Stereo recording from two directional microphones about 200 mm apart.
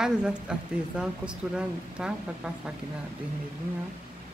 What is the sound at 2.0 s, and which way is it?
Speech, 5° right (ahead or behind).